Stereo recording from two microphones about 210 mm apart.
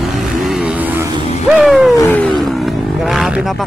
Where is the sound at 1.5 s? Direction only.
Centre (ahead or behind).